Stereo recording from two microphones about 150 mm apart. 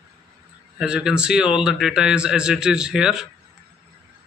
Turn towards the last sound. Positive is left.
turn(degrees=-5)  # may be behind; listen again after turning